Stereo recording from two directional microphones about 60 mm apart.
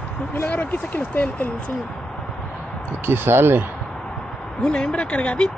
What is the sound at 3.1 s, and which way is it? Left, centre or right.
Speech, right.